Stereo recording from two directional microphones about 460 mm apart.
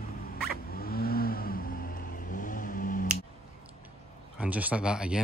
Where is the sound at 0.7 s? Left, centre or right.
Centre.